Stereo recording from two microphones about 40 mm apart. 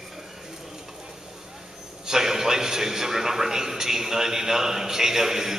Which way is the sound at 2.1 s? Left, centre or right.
Centre.